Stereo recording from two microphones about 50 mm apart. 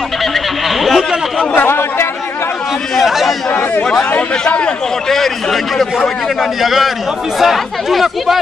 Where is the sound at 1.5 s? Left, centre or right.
Left.